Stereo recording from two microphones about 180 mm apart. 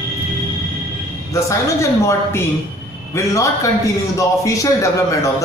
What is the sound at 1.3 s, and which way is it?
A woman's voice, 15° left (ahead or behind).